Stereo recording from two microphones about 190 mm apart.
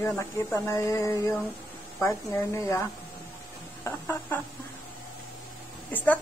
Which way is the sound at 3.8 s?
10° left (ahead or behind).